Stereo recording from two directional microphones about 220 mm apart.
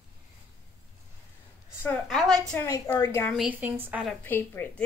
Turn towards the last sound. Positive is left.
turn(degrees=10)  # may be behind; listen again after turning